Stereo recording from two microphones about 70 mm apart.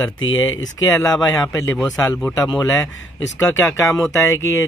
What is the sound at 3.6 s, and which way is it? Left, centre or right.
Speech, left.